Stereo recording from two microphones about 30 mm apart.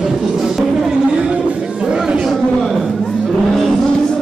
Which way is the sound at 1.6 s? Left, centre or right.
Right.